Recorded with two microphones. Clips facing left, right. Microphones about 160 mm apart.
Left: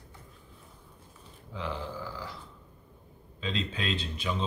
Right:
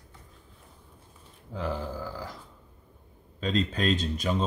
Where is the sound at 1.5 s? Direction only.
45° right (ahead or behind).